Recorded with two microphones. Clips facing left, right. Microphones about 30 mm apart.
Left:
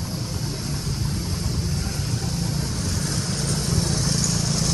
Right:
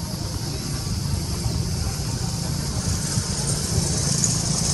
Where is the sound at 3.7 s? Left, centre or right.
Left.